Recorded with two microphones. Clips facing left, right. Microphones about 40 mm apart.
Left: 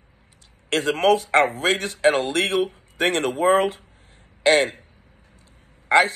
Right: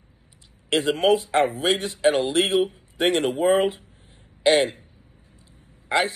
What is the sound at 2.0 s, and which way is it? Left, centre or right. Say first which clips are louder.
Speech: left 1 dB; left.